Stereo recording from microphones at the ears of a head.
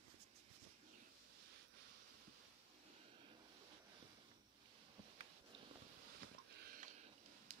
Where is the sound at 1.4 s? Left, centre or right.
Right.